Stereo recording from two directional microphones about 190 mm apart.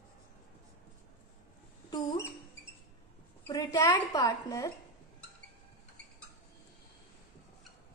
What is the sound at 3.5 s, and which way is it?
A woman's voice, 20° left (ahead or behind).